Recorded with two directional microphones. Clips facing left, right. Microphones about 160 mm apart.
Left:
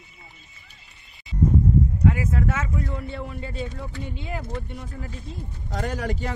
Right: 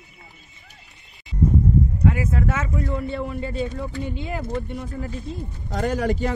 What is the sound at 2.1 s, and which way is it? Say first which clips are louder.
Speech: right 1 dB; 55° right (ahead or behind).